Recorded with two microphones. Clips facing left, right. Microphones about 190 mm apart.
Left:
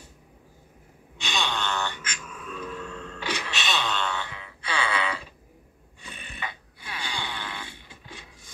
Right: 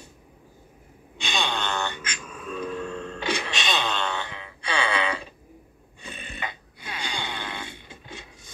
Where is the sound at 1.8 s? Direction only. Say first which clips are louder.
Right 1 dB; 30° right (ahead or behind).